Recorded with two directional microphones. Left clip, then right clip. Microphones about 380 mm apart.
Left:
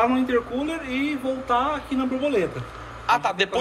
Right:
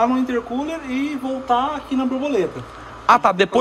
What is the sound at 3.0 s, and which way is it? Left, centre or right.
Speech, centre.